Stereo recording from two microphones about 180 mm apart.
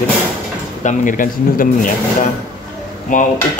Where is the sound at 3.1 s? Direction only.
45° left (ahead or behind).